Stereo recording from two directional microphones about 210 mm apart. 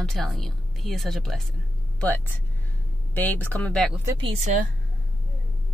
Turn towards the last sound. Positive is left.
turn(degrees=-35)  # may be behind; listen again after turning